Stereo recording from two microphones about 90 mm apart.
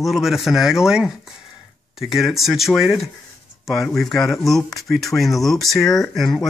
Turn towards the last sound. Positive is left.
turn(degrees=0)  # may be behind; listen again after turning